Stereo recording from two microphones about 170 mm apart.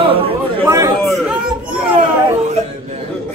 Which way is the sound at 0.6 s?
20° right (ahead or behind).